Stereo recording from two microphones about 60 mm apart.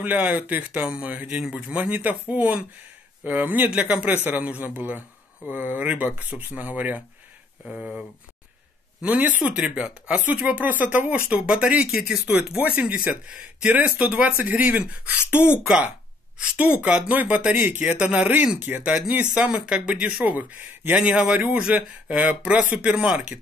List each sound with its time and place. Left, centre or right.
0.0 s speech: right
1.4 s speech: centre
1.8 s a man's voice: right
7.7 s speech: centre
9.4 s speech: centre
9.8 s speech: centre
17.1 s a man's voice: right
17.9 s speech: right
20.2 s speech: right